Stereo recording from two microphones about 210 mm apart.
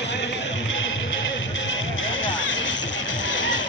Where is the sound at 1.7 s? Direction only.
65° left (ahead or behind).